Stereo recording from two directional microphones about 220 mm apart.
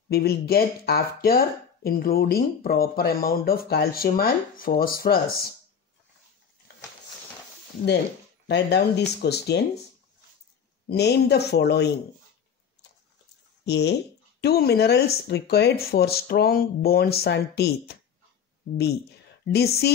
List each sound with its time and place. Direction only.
0.1 s speech: 45° left (ahead or behind)
8.5 s speech: 50° left (ahead or behind)
10.9 s speech: 50° left (ahead or behind)
13.7 s speech: 50° left (ahead or behind)
19.5 s speech: 45° left (ahead or behind)